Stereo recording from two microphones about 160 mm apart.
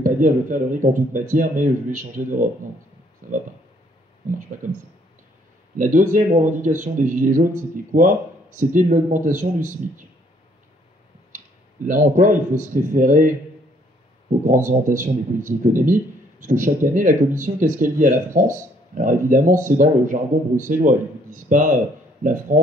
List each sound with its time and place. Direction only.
0.0 s a man's voice: 55° right (ahead or behind)
4.3 s a man's voice: 55° right (ahead or behind)
5.8 s a man's voice: 55° right (ahead or behind)
11.3 s speech: 55° right (ahead or behind)
14.4 s a man's voice: 55° right (ahead or behind)